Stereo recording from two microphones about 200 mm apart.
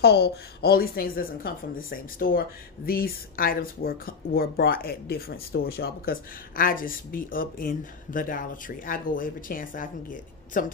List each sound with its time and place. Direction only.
0.0 s a woman's voice: 55° left (ahead or behind)